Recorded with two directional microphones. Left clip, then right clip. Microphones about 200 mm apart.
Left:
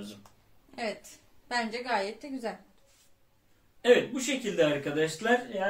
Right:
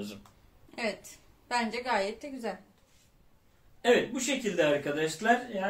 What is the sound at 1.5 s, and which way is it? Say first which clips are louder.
Speech: right 1 dB; 15° right (ahead or behind).